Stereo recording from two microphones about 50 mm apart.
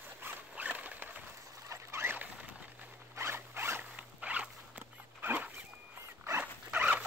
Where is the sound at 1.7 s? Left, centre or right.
Right.